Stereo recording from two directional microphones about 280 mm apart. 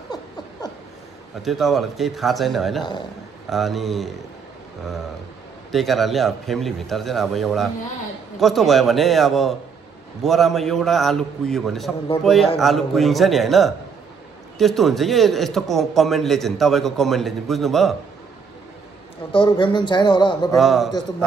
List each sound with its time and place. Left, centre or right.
0.1 s a sound: centre
1.4 s a man's voice: centre
5.7 s a man's voice: centre
19.3 s speech: centre
20.5 s a man's voice: centre